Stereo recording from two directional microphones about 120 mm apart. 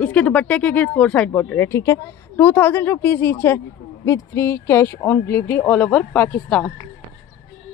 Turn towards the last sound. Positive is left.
turn(degrees=10)  # may be behind; listen again after turning